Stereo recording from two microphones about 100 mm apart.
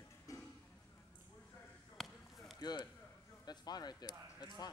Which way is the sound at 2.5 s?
40° left (ahead or behind).